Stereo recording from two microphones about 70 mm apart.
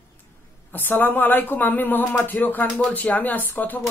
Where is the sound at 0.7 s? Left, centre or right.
Left.